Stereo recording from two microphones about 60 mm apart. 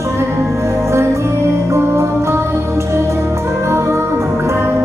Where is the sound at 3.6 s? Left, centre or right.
Right.